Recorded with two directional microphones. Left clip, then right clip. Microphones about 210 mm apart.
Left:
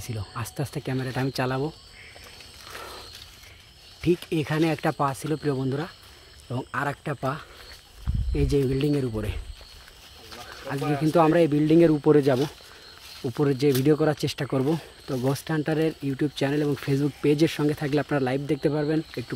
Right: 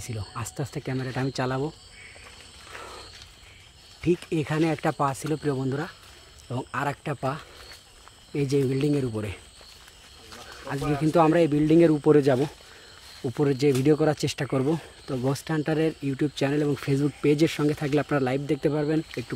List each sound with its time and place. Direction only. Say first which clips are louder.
0.0 s speech: left 1 dB; centre (ahead or behind)
4.0 s speech: left 1 dB; centre (ahead or behind)
10.8 s speech: left 1 dB; 45° left (ahead or behind)
11.1 s speech: left 1 dB; centre (ahead or behind)